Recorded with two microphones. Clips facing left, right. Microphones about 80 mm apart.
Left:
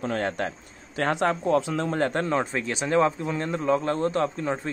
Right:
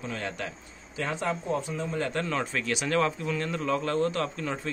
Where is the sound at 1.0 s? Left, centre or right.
Left.